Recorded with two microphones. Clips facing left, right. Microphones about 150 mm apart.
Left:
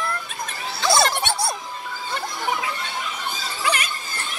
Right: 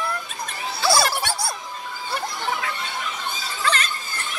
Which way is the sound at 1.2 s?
20° left (ahead or behind).